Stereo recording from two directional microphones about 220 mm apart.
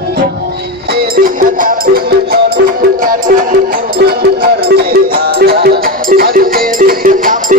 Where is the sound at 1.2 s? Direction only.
40° right (ahead or behind).